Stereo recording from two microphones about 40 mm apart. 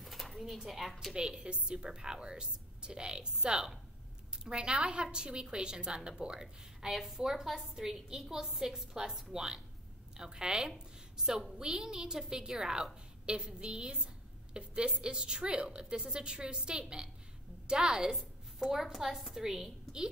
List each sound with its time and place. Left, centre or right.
0.0 s a sound: centre
0.7 s a woman's voice: centre
1.1 s a woman's voice: right
18.1 s a woman's voice: centre